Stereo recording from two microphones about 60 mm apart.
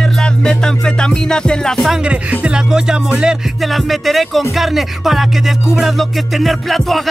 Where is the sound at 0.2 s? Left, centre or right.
Centre.